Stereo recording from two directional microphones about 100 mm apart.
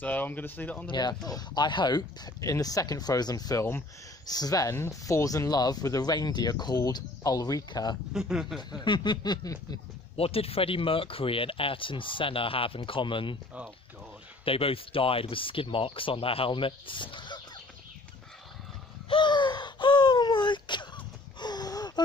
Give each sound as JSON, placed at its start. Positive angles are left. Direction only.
{"t": 0.0, "sound": "speech", "side_deg": 15}
{"t": 0.8, "sound": "speech", "side_deg": 45}
{"t": 2.5, "sound": "speech", "side_deg": 35}
{"t": 8.1, "sound": "speech", "side_deg": -5}
{"t": 8.8, "sound": "speech", "side_deg": 50}
{"t": 10.1, "sound": "speech", "side_deg": 75}
{"t": 14.4, "sound": "speech", "side_deg": 70}
{"t": 19.0, "sound": "gasp", "side_deg": 50}
{"t": 21.4, "sound": "wheeze", "side_deg": 45}